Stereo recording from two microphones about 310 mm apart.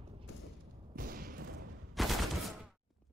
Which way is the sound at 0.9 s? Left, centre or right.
Right.